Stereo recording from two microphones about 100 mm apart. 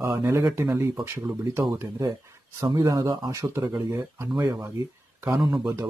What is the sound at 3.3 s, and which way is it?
Speech, 30° right (ahead or behind).